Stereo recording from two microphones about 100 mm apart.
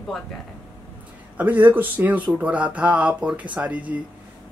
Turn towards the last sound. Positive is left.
turn(degrees=-15)  # may be behind; listen again after turning